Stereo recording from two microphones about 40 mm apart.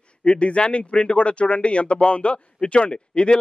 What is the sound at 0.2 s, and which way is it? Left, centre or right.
Speech, left.